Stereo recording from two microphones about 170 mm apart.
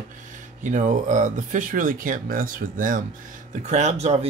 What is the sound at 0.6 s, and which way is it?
Speech, 45° right (ahead or behind).